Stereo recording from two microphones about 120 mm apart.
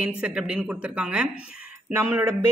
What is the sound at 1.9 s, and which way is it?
Speech, 20° right (ahead or behind).